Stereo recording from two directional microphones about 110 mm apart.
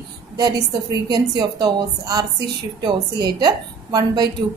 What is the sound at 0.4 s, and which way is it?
A woman's voice, 35° right (ahead or behind).